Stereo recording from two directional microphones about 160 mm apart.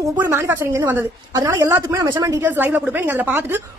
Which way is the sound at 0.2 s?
15° right (ahead or behind).